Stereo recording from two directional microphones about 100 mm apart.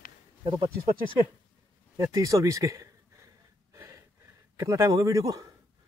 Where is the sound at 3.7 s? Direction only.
35° right (ahead or behind).